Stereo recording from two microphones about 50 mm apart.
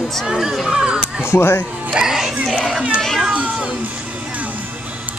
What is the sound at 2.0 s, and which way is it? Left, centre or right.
Speech, centre.